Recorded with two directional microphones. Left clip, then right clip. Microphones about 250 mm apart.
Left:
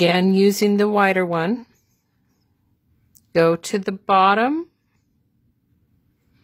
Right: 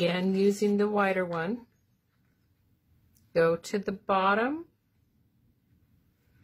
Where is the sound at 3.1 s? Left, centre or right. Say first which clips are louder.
Left 8 dB; left.